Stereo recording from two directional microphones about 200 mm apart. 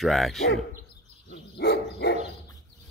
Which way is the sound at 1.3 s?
55° left (ahead or behind).